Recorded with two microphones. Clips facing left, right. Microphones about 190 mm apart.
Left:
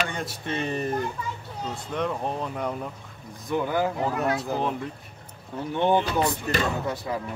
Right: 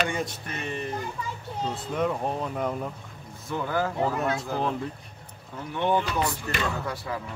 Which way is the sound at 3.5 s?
15° left (ahead or behind).